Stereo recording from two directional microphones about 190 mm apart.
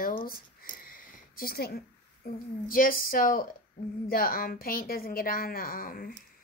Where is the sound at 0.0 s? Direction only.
50° left (ahead or behind).